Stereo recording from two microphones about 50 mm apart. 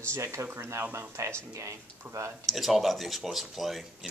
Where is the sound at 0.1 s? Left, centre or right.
Right.